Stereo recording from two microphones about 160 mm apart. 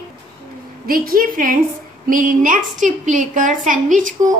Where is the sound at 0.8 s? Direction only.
65° right (ahead or behind).